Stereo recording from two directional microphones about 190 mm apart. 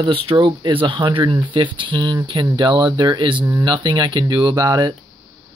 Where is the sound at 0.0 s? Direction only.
25° right (ahead or behind).